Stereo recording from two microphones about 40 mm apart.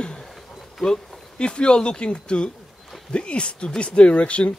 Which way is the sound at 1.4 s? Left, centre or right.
Left.